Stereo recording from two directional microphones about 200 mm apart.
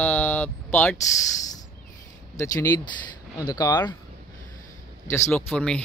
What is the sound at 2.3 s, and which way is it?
Speech, 15° left (ahead or behind).